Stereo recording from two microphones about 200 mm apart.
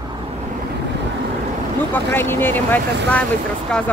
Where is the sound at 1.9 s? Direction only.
10° left (ahead or behind).